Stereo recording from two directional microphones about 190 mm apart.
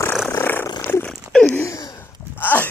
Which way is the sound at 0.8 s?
10° left (ahead or behind).